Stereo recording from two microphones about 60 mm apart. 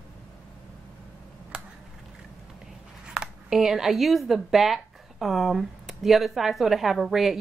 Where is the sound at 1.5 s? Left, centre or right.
Centre.